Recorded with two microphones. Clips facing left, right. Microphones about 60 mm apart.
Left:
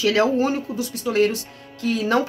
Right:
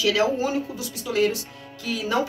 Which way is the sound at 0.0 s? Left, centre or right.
Left.